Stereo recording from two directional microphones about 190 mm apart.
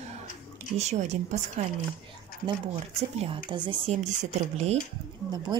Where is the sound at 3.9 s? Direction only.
40° right (ahead or behind).